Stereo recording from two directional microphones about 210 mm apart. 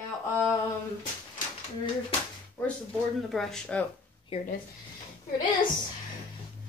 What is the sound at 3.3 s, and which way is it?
Speech, centre (ahead or behind).